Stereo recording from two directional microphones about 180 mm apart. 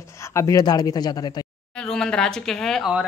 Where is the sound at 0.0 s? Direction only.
15° left (ahead or behind).